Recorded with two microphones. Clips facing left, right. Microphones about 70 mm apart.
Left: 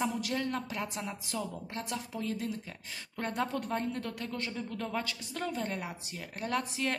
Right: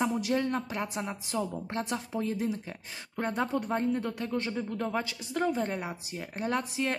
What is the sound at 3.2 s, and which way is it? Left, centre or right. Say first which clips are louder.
A woman's voice: right 3 dB; centre.